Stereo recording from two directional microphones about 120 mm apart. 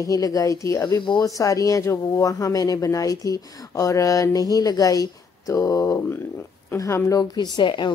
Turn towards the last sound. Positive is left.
turn(degrees=40)  # may be behind; listen again after turning